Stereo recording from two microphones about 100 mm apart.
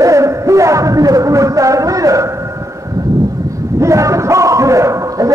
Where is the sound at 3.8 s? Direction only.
30° right (ahead or behind).